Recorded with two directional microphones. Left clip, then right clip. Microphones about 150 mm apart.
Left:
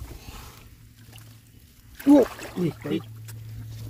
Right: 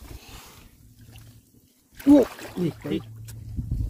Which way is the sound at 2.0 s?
25° right (ahead or behind).